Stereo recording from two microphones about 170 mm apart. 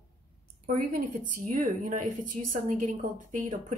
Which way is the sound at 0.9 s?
50° right (ahead or behind).